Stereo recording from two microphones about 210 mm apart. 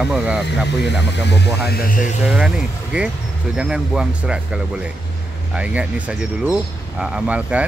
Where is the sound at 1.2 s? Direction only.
50° left (ahead or behind).